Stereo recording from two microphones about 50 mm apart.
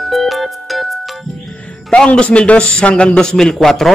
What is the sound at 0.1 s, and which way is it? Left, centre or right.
Music, centre.